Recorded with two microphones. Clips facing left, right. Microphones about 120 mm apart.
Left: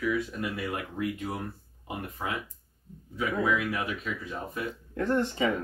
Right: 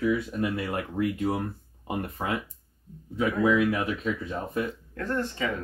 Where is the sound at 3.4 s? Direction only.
30° right (ahead or behind).